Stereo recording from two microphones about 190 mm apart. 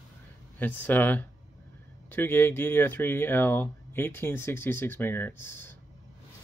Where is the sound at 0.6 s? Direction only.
10° left (ahead or behind).